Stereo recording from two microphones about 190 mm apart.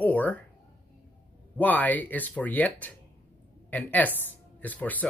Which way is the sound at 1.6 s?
10° left (ahead or behind).